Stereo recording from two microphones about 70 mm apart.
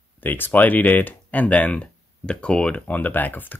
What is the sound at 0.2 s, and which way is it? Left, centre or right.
Speech, left.